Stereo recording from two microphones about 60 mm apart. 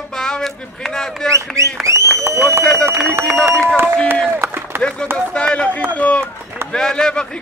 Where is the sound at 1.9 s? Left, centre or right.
Right.